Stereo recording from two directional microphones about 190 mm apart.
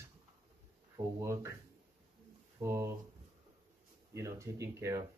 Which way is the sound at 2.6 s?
15° right (ahead or behind).